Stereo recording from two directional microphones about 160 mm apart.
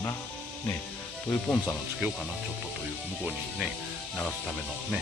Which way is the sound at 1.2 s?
10° left (ahead or behind).